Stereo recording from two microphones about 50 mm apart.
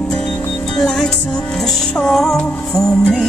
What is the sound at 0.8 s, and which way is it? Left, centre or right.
Music, centre.